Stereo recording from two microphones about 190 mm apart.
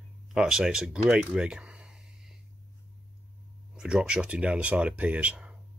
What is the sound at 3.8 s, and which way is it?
Speech, 5° right (ahead or behind).